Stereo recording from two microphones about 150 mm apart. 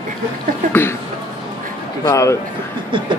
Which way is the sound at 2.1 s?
20° left (ahead or behind).